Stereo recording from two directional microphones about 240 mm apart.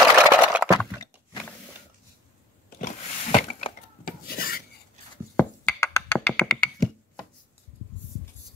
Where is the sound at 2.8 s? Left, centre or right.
Left.